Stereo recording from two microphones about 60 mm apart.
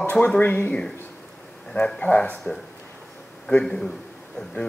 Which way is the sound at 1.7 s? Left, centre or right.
Centre.